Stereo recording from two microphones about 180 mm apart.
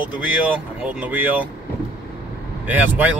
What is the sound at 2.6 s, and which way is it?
Speech, 10° right (ahead or behind).